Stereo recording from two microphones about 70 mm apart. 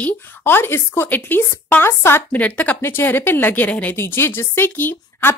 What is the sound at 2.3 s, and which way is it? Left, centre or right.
Speech, left.